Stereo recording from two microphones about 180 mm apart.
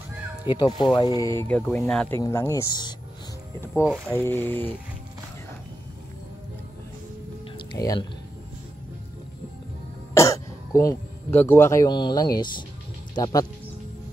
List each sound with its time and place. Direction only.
0.5 s speech: 25° left (ahead or behind)
7.5 s music: 20° left (ahead or behind)
10.1 s speech: 20° left (ahead or behind)